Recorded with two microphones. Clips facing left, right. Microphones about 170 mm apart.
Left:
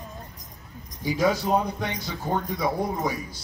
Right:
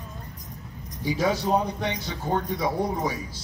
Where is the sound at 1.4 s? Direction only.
5° left (ahead or behind).